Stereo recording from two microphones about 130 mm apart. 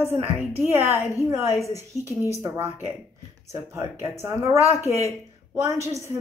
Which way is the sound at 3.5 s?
20° right (ahead or behind).